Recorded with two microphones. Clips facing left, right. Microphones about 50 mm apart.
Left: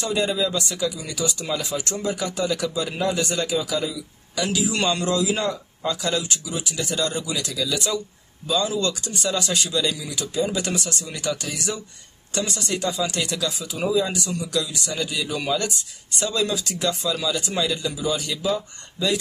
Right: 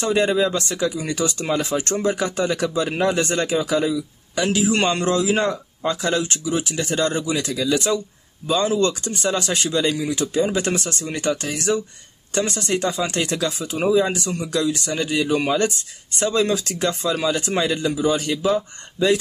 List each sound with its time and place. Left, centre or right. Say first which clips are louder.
0.0 s speech: right 5 dB; right